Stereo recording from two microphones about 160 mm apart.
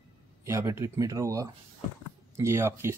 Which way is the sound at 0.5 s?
20° right (ahead or behind).